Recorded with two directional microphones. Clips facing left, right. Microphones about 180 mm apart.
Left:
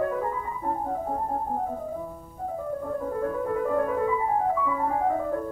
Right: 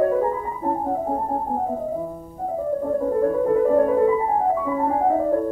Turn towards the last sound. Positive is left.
turn(degrees=-35)  # may be behind; listen again after turning